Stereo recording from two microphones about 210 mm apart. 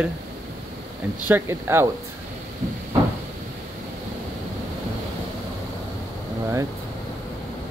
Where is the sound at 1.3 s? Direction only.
10° right (ahead or behind).